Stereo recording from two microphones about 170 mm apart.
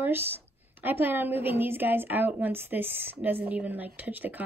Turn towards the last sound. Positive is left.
turn(degrees=-10)  # may be behind; listen again after turning